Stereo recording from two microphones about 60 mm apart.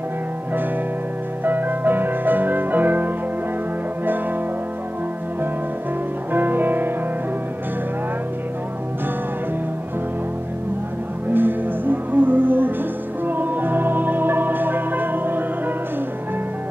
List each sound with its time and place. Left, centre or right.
1.4 s music: right
6.3 s music: right
11.3 s music: right